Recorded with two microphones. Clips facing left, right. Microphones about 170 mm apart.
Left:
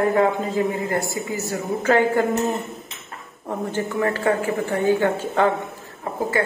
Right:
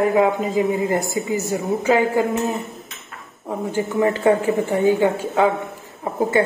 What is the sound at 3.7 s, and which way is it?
A woman's voice, 15° right (ahead or behind).